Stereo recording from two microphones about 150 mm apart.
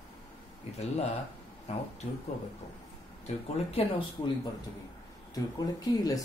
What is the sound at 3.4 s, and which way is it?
Speech, 40° left (ahead or behind).